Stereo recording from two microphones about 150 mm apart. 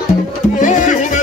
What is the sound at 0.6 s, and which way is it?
Music, 55° left (ahead or behind).